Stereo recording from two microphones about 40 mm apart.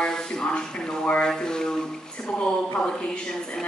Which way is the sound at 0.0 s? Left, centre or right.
Centre.